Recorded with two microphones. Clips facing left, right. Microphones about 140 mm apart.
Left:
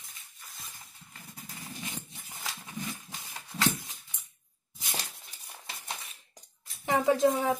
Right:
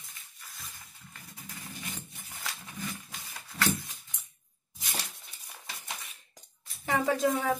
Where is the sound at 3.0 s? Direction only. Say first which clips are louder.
Left 1 dB; 20° left (ahead or behind).